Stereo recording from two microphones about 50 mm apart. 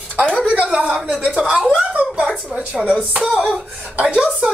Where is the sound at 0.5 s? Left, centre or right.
Right.